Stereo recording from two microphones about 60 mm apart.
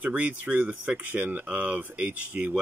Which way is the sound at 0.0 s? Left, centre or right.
Right.